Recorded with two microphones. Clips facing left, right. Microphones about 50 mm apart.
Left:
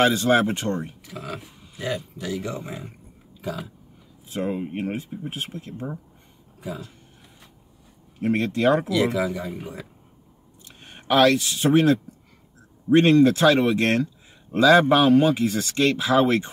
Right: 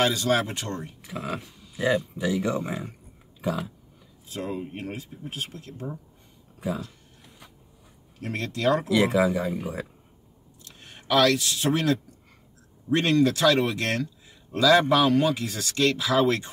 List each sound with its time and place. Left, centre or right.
0.0 s speech: left
1.0 s speech: centre
3.3 s a sound: centre
4.3 s speech: left
8.2 s speech: left
8.8 s speech: centre
10.6 s speech: left